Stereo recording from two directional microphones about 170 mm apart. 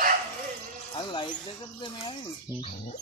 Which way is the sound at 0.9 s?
30° left (ahead or behind).